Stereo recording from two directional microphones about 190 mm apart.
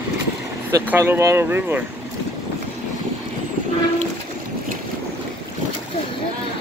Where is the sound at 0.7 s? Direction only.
15° right (ahead or behind).